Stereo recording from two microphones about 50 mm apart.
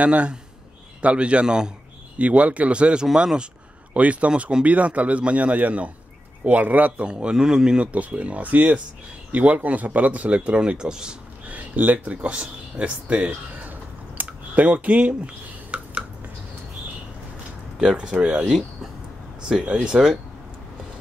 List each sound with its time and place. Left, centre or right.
0.0 s speech: right
4.3 s speech: centre
4.6 s a man's voice: right
7.1 s speech: centre
11.4 s a sound: right
14.6 s speech: right
17.7 s speech: centre
19.4 s speech: centre